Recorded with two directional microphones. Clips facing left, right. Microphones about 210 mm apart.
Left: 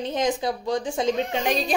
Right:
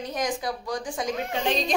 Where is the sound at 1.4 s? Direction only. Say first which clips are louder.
Right 2 dB; 10° left (ahead or behind).